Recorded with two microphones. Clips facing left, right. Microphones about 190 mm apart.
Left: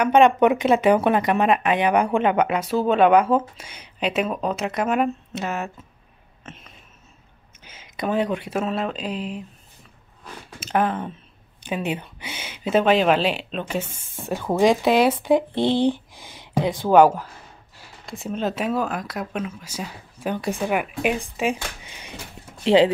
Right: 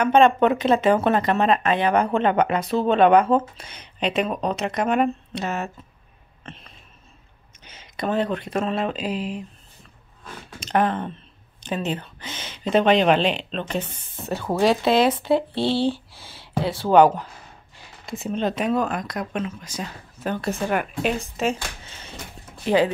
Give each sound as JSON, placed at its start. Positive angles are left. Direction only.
{"t": 0.0, "sound": "speech", "side_deg": 10}
{"t": 6.4, "sound": "a sound", "side_deg": 5}
{"t": 7.6, "sound": "speech", "side_deg": 10}
{"t": 10.6, "sound": "speech", "side_deg": 5}